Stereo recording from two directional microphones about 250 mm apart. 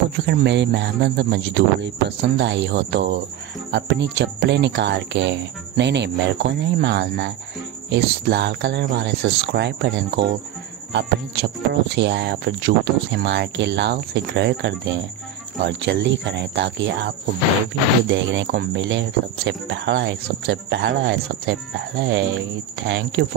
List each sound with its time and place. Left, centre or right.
0.1 s speech: right
18.1 s speech: right